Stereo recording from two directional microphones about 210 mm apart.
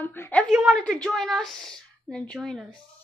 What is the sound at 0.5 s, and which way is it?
A woman's voice, 5° right (ahead or behind).